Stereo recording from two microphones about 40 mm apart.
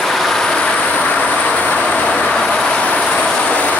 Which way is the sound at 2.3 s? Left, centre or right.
Centre.